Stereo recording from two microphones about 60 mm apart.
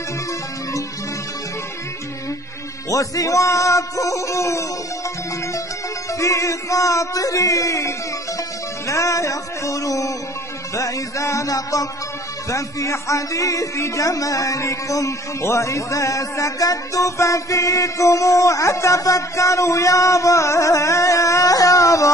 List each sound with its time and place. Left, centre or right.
2.9 s speech: left
6.1 s speech: left
10.7 s music: left
12.4 s speech: left